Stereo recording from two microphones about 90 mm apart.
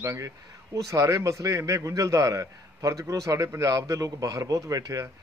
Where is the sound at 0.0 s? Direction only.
35° right (ahead or behind).